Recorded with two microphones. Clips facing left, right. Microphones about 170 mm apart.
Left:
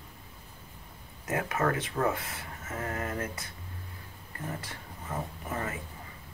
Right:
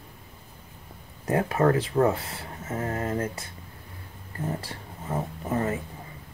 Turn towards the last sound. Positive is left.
turn(degrees=-30)  # may be behind; listen again after turning